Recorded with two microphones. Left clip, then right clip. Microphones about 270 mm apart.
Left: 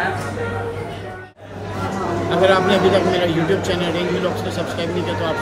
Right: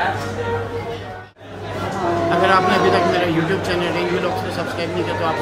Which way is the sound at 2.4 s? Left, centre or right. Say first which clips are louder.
Left 1 dB; centre.